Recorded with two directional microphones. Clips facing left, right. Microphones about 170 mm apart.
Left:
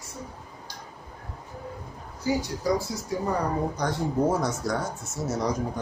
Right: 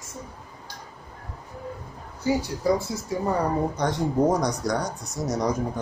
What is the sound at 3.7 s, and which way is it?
Speech, 20° right (ahead or behind).